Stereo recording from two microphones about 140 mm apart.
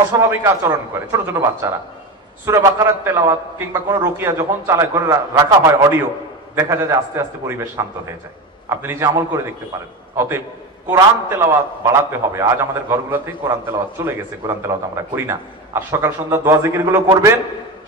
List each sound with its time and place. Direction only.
0.3 s a man's voice: 20° right (ahead or behind)